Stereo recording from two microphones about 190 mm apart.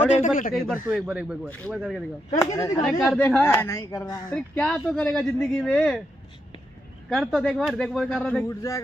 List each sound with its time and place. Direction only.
0.1 s speech: 40° left (ahead or behind)
1.0 s speech: 5° right (ahead or behind)
1.5 s speech: 5° left (ahead or behind)
2.3 s speech: 15° left (ahead or behind)
3.0 s speech: 5° left (ahead or behind)
7.1 s speech: centre (ahead or behind); by 8.8 s 15° left (ahead or behind)